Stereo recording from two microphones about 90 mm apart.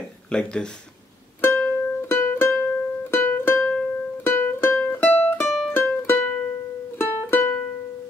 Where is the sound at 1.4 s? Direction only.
25° left (ahead or behind).